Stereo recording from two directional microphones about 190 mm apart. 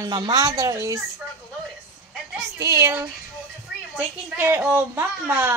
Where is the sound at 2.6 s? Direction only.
15° right (ahead or behind).